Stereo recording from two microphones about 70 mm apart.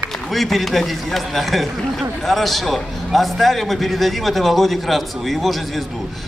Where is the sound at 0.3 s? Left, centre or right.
Centre.